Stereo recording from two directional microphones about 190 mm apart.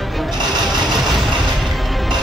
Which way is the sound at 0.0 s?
Centre (ahead or behind).